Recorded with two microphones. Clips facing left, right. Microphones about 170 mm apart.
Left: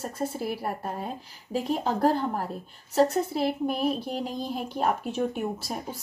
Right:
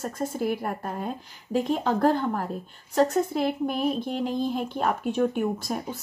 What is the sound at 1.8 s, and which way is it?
Speech, 35° left (ahead or behind).